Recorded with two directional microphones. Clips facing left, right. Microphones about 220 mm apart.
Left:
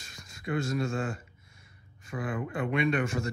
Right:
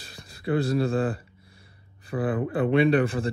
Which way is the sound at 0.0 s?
35° right (ahead or behind).